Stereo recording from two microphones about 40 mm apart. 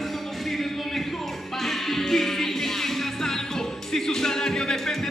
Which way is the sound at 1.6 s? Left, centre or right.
Centre.